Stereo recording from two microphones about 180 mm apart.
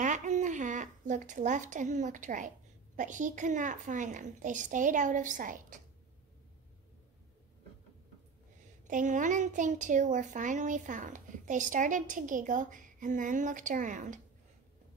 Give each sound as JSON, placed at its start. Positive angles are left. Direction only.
{"t": 0.0, "sound": "a woman's voice", "side_deg": -45}
{"t": 8.8, "sound": "a woman's voice", "side_deg": -45}